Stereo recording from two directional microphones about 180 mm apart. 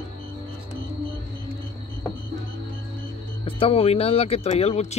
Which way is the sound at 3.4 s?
30° left (ahead or behind).